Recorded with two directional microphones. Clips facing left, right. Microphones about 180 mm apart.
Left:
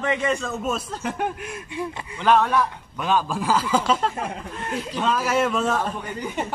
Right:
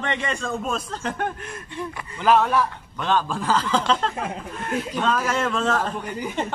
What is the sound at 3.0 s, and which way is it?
Speech, 10° left (ahead or behind).